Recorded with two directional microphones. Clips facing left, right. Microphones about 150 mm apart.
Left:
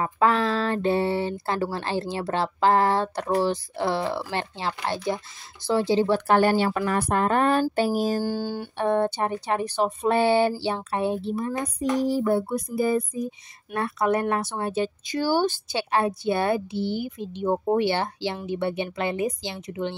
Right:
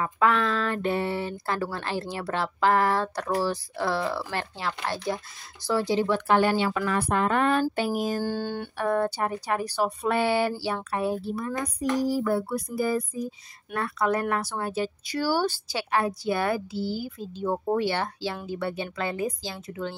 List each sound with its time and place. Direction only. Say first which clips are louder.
0.0 s speech: left 2 dB; 30° left (ahead or behind)
8.2 s a sound: left 2 dB; 10° left (ahead or behind)
8.7 s speech: left 3 dB; 25° left (ahead or behind)